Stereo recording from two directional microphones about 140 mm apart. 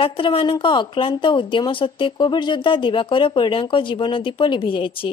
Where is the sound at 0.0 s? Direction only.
40° left (ahead or behind).